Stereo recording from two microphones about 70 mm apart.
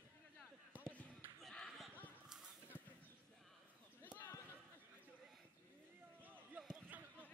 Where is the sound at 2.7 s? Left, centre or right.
Right.